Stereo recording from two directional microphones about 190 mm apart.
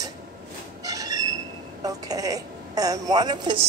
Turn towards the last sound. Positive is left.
turn(degrees=-25)  # may be behind; listen again after turning